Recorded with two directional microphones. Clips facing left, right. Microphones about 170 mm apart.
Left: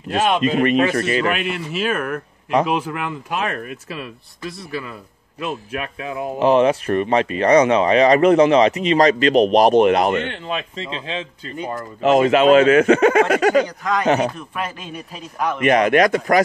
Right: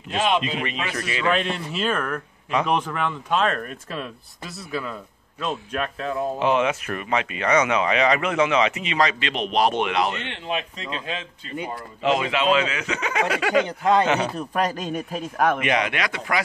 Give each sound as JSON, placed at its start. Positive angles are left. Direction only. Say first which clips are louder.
{"t": 0.1, "sound": "speech", "louder": "left 5 dB", "side_deg": 45}
{"t": 1.3, "sound": "speech", "louder": "left 1 dB", "side_deg": 5}
{"t": 6.4, "sound": "speech", "louder": "left 8 dB", "side_deg": 35}
{"t": 11.7, "sound": "speech", "louder": "left 7 dB", "side_deg": 45}
{"t": 14.2, "sound": "speech", "louder": "even", "side_deg": -40}
{"t": 15.6, "sound": "speech", "louder": "left 9 dB", "side_deg": 45}